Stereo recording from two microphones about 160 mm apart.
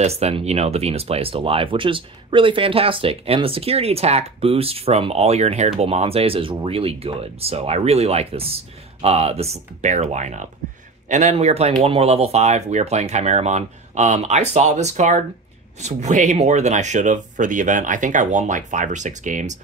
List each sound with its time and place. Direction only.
0.0 s speech: 40° right (ahead or behind)